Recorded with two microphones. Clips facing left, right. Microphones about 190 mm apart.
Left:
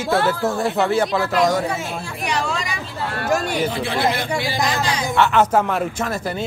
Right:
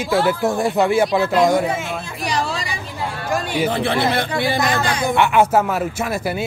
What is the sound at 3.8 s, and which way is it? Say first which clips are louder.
Speech: right 2 dB; 60° right (ahead or behind).